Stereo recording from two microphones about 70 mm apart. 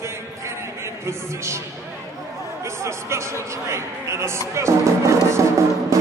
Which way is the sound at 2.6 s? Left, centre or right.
Right.